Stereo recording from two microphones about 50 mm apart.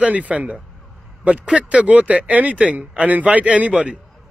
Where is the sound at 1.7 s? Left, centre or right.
Right.